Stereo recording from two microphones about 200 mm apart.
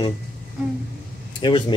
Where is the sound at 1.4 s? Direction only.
25° left (ahead or behind).